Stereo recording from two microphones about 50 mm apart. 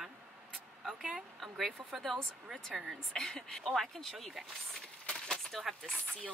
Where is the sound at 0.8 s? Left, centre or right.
Centre.